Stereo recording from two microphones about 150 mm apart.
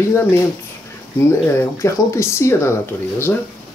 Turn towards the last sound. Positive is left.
turn(degrees=15)  # may be behind; listen again after turning